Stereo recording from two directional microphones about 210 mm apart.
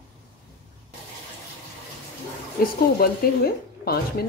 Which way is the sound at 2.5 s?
45° left (ahead or behind).